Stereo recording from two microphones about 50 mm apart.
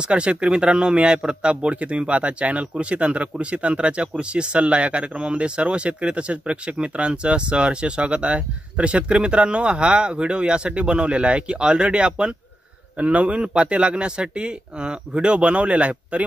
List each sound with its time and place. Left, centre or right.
0.1 s a man's voice: right